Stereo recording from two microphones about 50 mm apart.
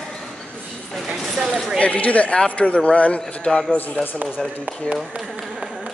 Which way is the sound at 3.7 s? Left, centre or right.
Left.